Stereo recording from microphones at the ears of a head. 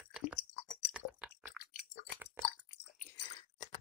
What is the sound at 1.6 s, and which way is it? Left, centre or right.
Chewing, left.